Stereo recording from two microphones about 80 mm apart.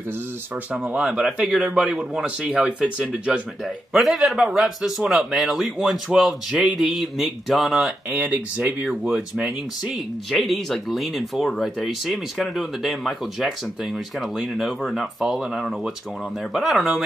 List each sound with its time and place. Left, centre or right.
0.8 s speech: centre
1.7 s speech: centre
8.1 s speech: centre
10.3 s speech: centre